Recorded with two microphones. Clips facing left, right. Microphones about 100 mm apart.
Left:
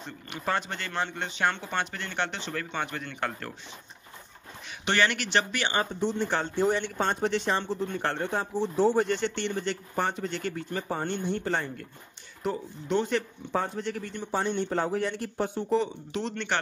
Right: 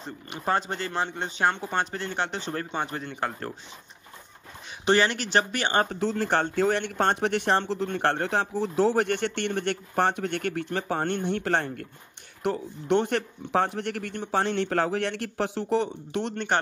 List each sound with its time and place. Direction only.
0.3 s speech: 35° right (ahead or behind)
4.8 s speech: 35° right (ahead or behind)
5.9 s speech: 90° right
6.8 s speech: 65° right (ahead or behind)